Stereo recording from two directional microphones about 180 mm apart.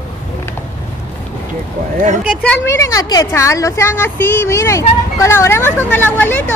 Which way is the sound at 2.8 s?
20° left (ahead or behind).